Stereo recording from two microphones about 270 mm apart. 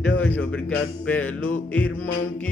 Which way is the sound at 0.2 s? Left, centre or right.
Centre.